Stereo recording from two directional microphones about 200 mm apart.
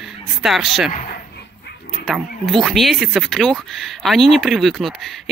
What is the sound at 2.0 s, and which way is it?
Speech, centre (ahead or behind).